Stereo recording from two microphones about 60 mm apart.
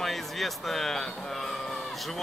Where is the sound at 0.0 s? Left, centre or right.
Centre.